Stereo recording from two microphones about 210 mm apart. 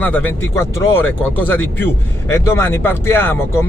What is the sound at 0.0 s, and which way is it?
Speech, 10° left (ahead or behind).